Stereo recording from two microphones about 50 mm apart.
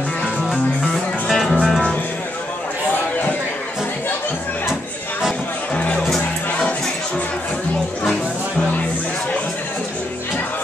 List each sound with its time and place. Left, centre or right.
0.9 s music: centre
2.9 s a sound: left
5.8 s music: left